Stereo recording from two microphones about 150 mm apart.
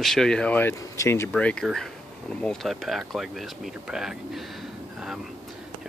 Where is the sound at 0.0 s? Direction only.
Centre (ahead or behind); by 1.3 s 20° left (ahead or behind).